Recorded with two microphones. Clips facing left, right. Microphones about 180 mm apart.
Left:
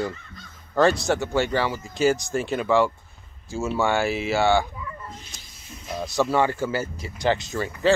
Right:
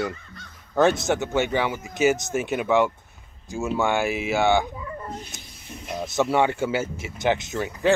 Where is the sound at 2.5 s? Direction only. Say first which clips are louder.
Even; 15° right (ahead or behind).